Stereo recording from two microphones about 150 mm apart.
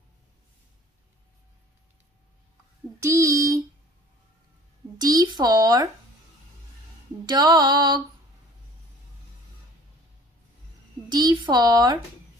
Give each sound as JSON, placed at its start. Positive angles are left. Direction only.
{"t": 3.0, "sound": "speech", "side_deg": -20}
{"t": 4.9, "sound": "speech", "side_deg": -25}
{"t": 7.2, "sound": "speech", "side_deg": -30}
{"t": 11.1, "sound": "speech", "side_deg": -30}